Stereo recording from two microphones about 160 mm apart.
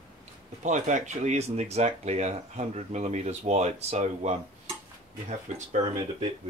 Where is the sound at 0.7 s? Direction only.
50° right (ahead or behind).